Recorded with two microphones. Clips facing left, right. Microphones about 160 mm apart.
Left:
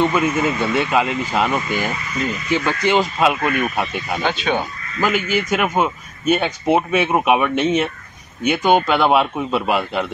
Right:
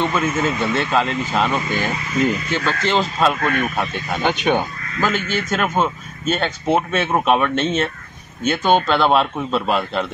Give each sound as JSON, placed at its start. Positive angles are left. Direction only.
{"t": 0.0, "sound": "speech", "side_deg": 10}
{"t": 4.2, "sound": "speech", "side_deg": -15}
{"t": 5.0, "sound": "speech", "side_deg": 10}